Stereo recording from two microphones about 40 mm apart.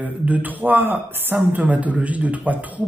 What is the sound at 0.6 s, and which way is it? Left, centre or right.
Speech, right.